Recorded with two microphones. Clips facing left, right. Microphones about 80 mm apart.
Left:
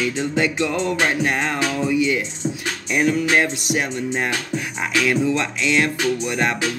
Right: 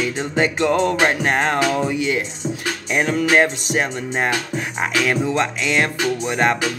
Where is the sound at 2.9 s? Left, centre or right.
Right.